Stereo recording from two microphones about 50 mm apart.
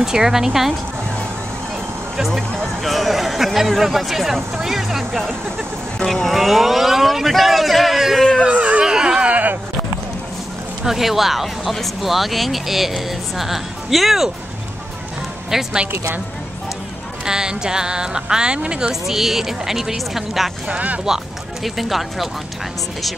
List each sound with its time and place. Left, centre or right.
0.0 s speech: centre
2.1 s speech: centre
8.4 s a sound: right
10.8 s speech: centre
15.5 s speech: centre
17.2 s speech: centre
20.6 s speech: right
21.6 s speech: centre